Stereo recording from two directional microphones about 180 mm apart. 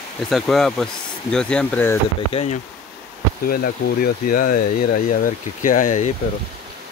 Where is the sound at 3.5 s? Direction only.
55° left (ahead or behind).